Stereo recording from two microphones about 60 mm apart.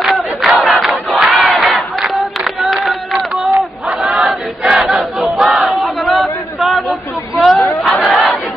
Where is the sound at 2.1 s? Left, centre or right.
Centre.